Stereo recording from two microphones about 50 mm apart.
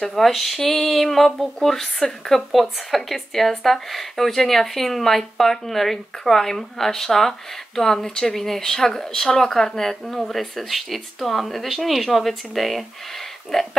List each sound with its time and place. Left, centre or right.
0.0 s speech: centre